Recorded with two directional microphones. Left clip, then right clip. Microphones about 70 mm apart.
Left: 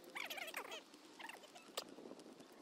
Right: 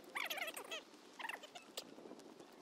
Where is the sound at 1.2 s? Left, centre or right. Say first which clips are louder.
Right 7 dB; right.